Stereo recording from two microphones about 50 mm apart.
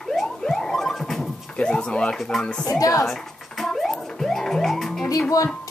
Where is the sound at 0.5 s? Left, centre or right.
Centre.